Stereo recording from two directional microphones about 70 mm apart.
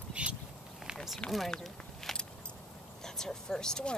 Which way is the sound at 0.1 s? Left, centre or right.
Centre.